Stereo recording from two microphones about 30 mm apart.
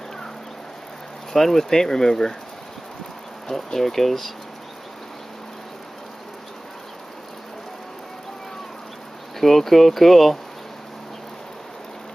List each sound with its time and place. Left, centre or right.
1.3 s speech: centre
3.4 s speech: centre
9.4 s speech: centre